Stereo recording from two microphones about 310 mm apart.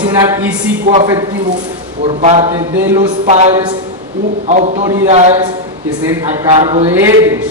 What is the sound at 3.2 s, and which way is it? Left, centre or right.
A man's voice, right.